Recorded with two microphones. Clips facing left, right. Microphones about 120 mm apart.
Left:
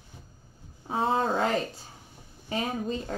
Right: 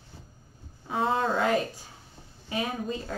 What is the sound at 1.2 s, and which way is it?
Speech, 35° left (ahead or behind).